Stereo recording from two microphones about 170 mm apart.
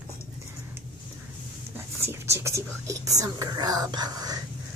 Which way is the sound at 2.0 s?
15° right (ahead or behind).